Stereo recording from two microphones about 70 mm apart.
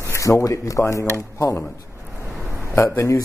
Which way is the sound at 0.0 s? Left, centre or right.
Left.